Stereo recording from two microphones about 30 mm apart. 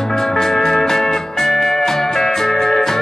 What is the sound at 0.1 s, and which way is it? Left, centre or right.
Music, centre.